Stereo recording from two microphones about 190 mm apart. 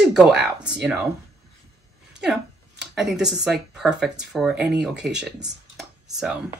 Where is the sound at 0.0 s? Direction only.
5° right (ahead or behind).